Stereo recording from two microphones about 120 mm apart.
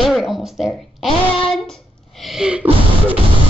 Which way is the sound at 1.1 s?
50° left (ahead or behind).